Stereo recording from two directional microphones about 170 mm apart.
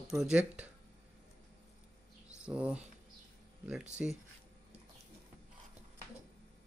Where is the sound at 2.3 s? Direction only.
5° right (ahead or behind).